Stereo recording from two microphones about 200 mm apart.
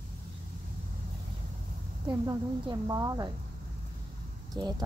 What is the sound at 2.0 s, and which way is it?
Speech, 20° right (ahead or behind).